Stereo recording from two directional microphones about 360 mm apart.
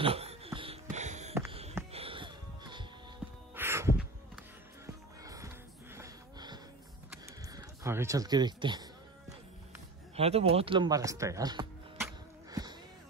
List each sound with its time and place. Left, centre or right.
0.0 s a sound: centre
1.3 s music: centre
3.5 s heart sounds: centre
4.8 s music: centre
5.9 s a sound: centre
7.4 s speech: centre
10.1 s music: centre